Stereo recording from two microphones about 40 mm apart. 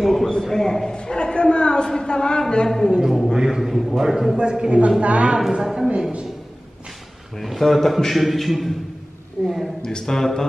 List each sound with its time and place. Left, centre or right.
0.0 s a sound: centre
0.4 s a man's voice: centre
0.9 s a man's voice: left
2.7 s speech: centre
3.0 s a man's voice: centre
4.4 s a woman's voice: right
5.6 s a man's voice: centre
7.3 s a man's voice: centre
9.4 s speech: right
9.8 s speech: centre